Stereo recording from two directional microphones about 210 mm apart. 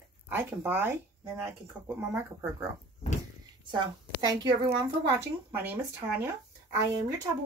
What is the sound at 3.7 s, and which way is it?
A woman's voice, 20° right (ahead or behind).